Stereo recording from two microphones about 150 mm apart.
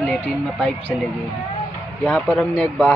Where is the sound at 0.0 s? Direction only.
10° left (ahead or behind).